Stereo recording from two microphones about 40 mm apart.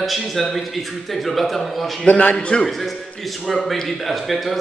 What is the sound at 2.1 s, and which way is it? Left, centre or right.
Speech, left.